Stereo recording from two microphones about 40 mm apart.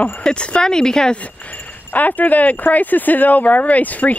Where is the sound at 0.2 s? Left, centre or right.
Left.